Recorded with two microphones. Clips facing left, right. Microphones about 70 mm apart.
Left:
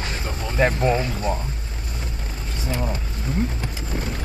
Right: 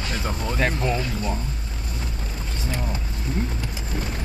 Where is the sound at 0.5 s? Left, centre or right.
Left.